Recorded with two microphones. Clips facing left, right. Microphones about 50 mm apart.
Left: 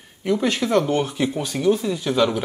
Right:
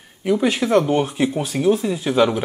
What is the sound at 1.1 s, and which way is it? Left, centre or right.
Speech, right.